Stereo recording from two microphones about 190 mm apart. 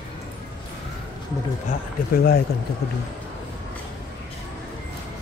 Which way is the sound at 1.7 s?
50° left (ahead or behind).